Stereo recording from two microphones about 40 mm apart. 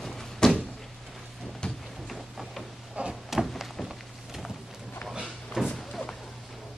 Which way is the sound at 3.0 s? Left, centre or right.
Right.